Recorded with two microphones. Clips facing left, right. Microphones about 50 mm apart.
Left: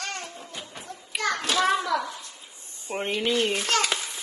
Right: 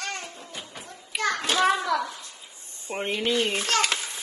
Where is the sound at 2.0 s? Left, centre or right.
Left.